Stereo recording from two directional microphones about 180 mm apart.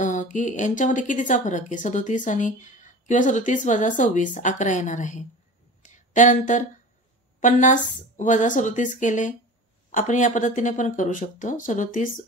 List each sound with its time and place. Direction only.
0.0 s speech: 45° left (ahead or behind)